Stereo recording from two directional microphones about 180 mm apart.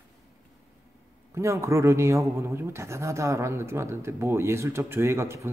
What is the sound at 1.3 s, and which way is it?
Speech, 15° right (ahead or behind).